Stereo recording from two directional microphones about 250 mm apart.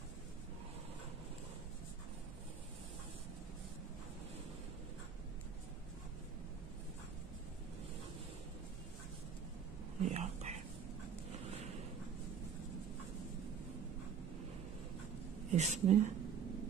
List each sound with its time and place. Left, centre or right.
10.0 s whispering: right
11.3 s a sound: right
15.5 s a woman's voice: right